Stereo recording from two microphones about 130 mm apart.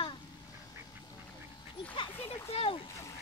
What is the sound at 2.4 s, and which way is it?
Speech, 45° left (ahead or behind).